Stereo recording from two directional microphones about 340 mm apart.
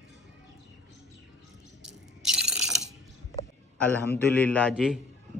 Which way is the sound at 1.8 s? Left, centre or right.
Centre.